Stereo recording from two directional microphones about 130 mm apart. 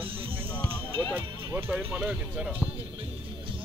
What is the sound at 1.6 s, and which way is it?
Speech, 15° right (ahead or behind).